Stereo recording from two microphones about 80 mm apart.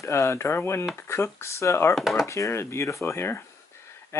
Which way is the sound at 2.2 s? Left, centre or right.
Left.